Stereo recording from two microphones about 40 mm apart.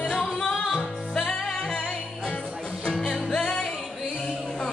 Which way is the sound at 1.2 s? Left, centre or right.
Centre.